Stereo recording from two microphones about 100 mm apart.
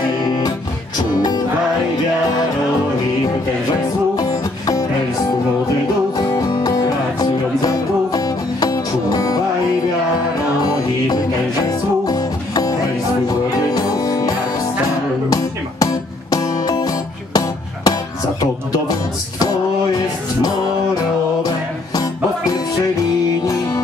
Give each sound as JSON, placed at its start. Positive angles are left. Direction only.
{"t": 4.2, "sound": "music", "side_deg": 40}
{"t": 6.1, "sound": "music", "side_deg": 40}
{"t": 12.1, "sound": "music", "side_deg": 40}